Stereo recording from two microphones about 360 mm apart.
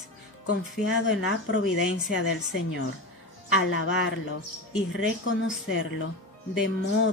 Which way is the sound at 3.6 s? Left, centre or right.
Left.